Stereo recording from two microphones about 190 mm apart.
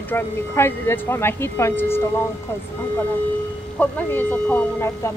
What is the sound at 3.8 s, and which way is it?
A woman's voice, 10° left (ahead or behind).